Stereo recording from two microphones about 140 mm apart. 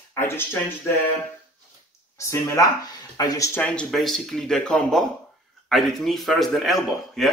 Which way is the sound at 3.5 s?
10° left (ahead or behind).